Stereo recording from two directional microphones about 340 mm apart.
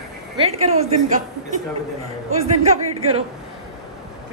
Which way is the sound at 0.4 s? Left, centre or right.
Centre.